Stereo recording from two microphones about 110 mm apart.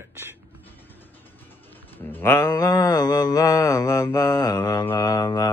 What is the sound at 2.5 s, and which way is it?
Mantra, 30° left (ahead or behind).